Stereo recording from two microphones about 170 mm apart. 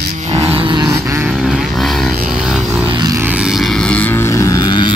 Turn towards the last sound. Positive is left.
turn(degrees=25)  # may be behind; listen again after turning